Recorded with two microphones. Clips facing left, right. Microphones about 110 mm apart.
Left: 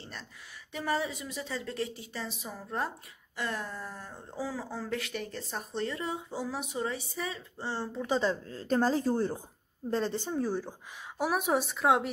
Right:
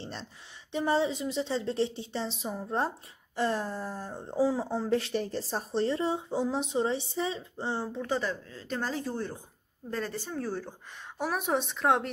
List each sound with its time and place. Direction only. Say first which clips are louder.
0.0 s speech: right 5 dB; 30° right (ahead or behind)
8.1 s a woman's voice: left 3 dB; 25° left (ahead or behind)
8.5 s speech: left 7 dB; 40° left (ahead or behind)
9.8 s a woman's voice: left 4 dB; 25° left (ahead or behind); by 12.1 s centre (ahead or behind)